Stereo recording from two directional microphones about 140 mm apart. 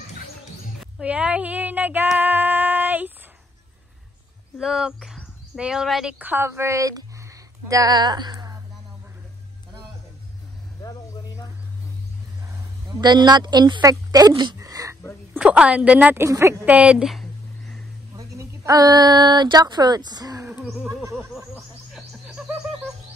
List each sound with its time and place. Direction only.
0.9 s female singing: 10° right (ahead or behind)
4.6 s speech: 5° right (ahead or behind); by 8.5 s 30° right (ahead or behind)
10.8 s vehicle: 25° left (ahead or behind)
12.4 s speech: 30° right (ahead or behind)
14.3 s a sound: 30° right (ahead or behind)
15.3 s a woman's voice: 10° right (ahead or behind)
16.3 s speech: 20° right (ahead or behind); by 17.8 s 5° left (ahead or behind)
18.1 s speech: 25° right (ahead or behind)
20.6 s neigh: centre (ahead or behind)
21.5 s snicker: 5° right (ahead or behind)